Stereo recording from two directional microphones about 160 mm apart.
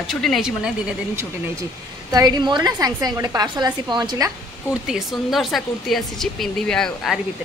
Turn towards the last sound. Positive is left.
turn(degrees=0)  # may be behind; listen again after turning